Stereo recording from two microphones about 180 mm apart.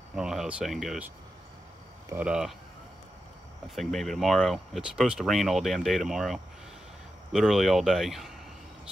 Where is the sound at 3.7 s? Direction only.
Centre (ahead or behind).